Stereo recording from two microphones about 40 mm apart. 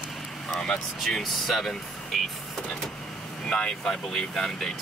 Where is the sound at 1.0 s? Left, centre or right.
Centre.